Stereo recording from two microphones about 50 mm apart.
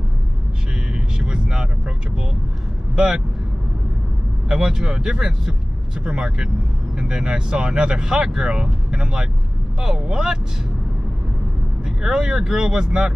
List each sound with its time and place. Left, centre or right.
1.2 s speech: centre
4.5 s speech: centre
11.8 s speech: centre